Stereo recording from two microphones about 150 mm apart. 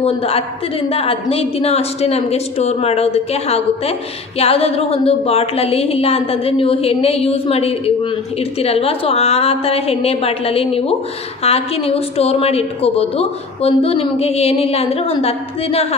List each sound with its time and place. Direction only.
0.0 s a woman's voice: 40° left (ahead or behind)